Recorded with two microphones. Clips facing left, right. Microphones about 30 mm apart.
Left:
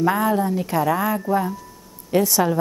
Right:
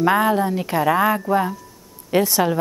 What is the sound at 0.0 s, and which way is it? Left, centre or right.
Speech, right.